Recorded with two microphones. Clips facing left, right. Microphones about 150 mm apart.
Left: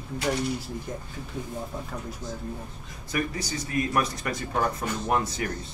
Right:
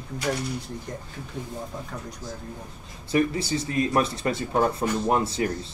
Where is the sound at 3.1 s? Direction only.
30° right (ahead or behind).